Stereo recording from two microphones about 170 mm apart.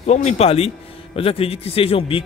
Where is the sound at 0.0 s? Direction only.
40° left (ahead or behind).